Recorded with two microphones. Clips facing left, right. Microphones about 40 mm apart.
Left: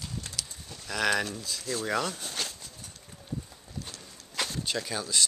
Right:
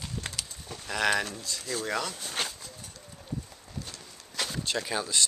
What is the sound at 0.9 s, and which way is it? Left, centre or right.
A man's voice, centre.